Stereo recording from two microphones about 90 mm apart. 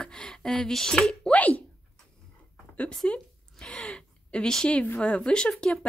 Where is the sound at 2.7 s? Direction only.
10° left (ahead or behind).